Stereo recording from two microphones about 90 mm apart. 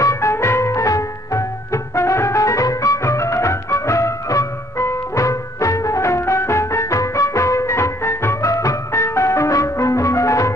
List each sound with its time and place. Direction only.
0.0 s music: 35° left (ahead or behind)